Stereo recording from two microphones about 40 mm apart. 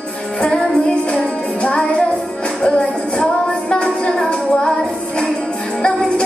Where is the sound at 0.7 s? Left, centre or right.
Left.